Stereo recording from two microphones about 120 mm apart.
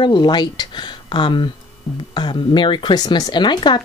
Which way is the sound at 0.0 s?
40° left (ahead or behind).